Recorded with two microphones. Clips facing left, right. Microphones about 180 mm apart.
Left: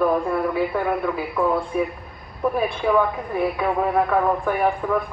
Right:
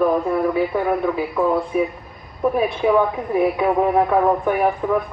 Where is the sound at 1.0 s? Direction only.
20° right (ahead or behind).